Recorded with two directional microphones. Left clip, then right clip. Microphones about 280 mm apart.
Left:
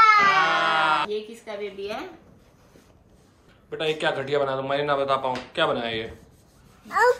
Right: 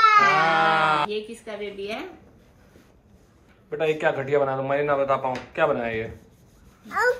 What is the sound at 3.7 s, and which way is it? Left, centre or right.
Speech, centre.